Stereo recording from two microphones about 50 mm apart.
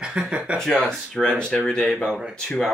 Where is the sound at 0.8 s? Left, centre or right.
Centre.